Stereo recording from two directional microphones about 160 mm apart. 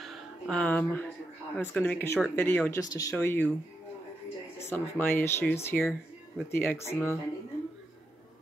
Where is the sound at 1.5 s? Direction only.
10° left (ahead or behind).